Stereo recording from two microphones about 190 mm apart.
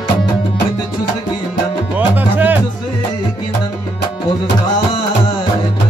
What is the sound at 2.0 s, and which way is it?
Music, 10° right (ahead or behind).